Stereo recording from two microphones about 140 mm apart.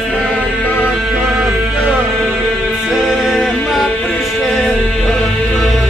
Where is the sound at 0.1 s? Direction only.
5° left (ahead or behind).